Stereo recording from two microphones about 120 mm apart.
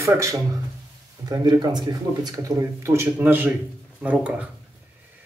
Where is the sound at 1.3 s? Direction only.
35° right (ahead or behind); by 4.5 s 10° right (ahead or behind).